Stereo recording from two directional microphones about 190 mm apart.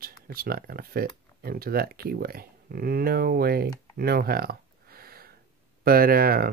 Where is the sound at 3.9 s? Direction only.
50° right (ahead or behind).